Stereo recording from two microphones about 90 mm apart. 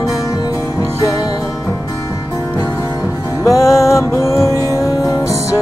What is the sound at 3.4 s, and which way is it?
Music, 35° left (ahead or behind).